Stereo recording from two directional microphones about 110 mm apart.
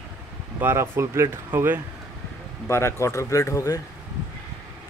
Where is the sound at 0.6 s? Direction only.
25° right (ahead or behind).